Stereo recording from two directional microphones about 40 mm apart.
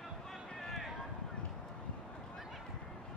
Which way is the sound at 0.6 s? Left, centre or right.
Centre.